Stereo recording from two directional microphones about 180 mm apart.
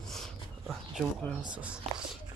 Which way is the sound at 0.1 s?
Centre (ahead or behind).